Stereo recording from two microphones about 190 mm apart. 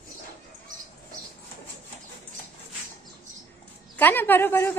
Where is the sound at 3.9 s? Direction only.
10° left (ahead or behind).